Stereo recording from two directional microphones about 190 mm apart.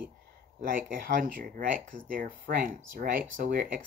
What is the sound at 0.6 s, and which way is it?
Speech, 50° right (ahead or behind).